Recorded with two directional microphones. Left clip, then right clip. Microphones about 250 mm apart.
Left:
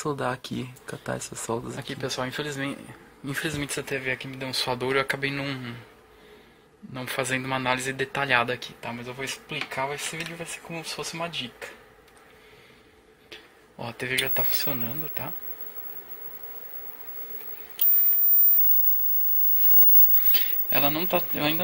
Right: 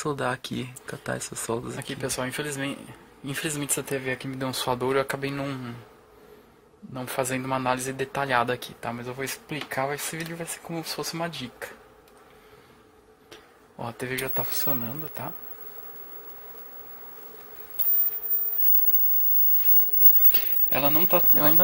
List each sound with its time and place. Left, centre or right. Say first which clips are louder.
0.0 s speech: right 1 dB; centre
6.9 s speech: left 1 dB; centre
8.5 s speech: right 1 dB; centre
13.3 s speech: left 3 dB; centre
20.2 s speech: left 4 dB; centre